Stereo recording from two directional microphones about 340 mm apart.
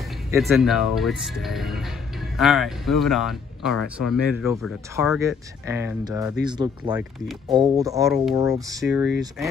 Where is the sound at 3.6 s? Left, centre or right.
Left.